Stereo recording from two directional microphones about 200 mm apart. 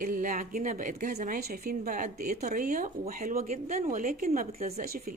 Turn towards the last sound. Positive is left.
turn(degrees=-45)  # may be behind; listen again after turning